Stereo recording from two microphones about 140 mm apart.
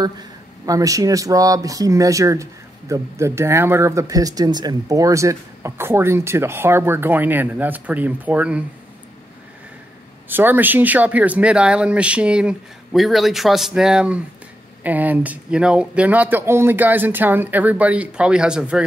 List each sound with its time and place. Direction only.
0.0 s speech: 25° right (ahead or behind); by 8.6 s 10° right (ahead or behind)
10.2 s speech: 15° right (ahead or behind)